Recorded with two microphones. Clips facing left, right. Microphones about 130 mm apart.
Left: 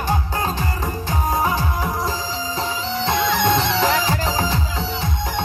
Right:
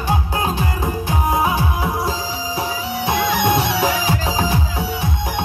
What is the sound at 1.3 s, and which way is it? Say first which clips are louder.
Music: right 1 dB; 15° right (ahead or behind).